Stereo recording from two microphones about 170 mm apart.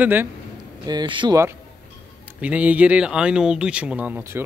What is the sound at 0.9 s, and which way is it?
Speech, 25° right (ahead or behind).